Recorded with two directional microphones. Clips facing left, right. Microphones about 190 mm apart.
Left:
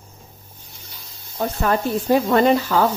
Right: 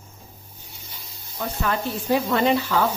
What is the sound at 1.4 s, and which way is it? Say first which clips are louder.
Speech: left 5 dB; 40° left (ahead or behind).